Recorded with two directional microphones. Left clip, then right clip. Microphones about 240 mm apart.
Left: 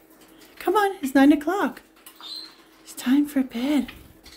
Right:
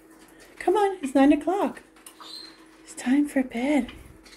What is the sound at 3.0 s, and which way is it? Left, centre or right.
Speech, centre.